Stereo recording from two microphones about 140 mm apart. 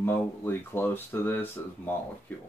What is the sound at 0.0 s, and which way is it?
Speech, 15° left (ahead or behind).